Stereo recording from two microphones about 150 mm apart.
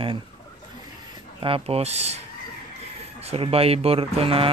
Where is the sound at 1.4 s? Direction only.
35° right (ahead or behind).